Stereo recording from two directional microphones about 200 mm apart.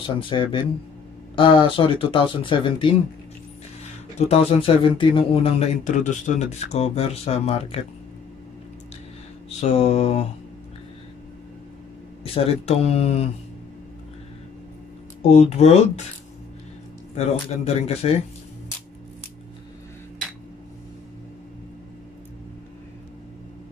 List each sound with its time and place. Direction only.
0.0 s speech: 25° left (ahead or behind)
4.3 s speech: 25° left (ahead or behind)
9.6 s speech: 35° left (ahead or behind)
12.2 s speech: 30° left (ahead or behind)
15.2 s speech: 35° left (ahead or behind)
17.6 s speech: 30° left (ahead or behind)